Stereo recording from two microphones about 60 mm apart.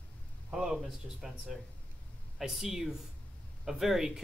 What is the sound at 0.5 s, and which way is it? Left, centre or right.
Speech, centre.